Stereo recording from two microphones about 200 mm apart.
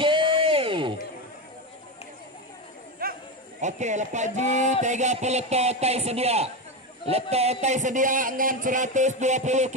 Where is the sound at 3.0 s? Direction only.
45° right (ahead or behind).